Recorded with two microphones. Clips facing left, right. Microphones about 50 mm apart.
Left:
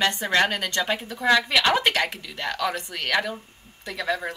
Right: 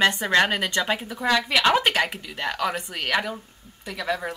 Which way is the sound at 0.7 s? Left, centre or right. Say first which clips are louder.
Right 1 dB; centre.